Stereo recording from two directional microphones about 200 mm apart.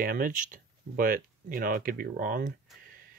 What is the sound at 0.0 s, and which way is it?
Speech, 45° right (ahead or behind).